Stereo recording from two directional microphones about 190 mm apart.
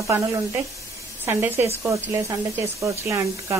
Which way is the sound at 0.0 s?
15° right (ahead or behind).